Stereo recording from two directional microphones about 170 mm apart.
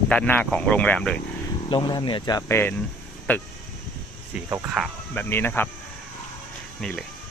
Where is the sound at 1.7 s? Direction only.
25° left (ahead or behind); by 3.4 s 10° left (ahead or behind).